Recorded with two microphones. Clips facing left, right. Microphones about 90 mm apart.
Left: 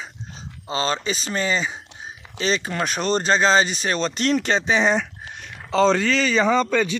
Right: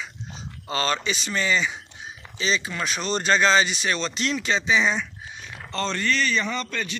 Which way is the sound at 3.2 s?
30° left (ahead or behind).